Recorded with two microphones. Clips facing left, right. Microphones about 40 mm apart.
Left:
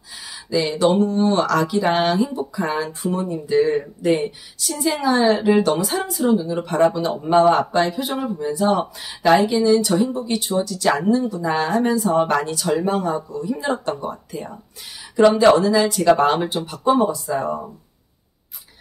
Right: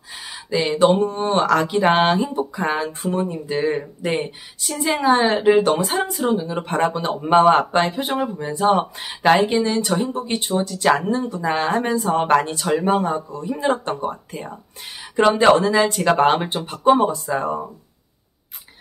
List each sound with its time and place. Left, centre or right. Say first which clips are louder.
0.1 s speech: left 1 dB; right
15.5 s speech: even; right